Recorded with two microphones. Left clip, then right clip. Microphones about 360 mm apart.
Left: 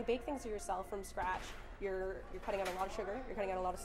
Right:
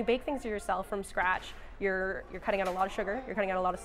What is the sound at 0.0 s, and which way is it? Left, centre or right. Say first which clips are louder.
A woman's voice: right 8 dB; right.